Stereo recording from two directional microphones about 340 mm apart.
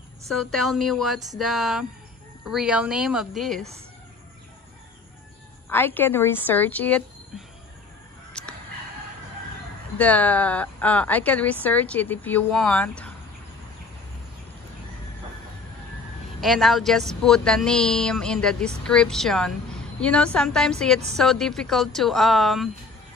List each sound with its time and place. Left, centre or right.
0.3 s speech: centre
5.7 s speech: centre
8.3 s a sound: centre
9.9 s speech: centre
16.3 s speech: centre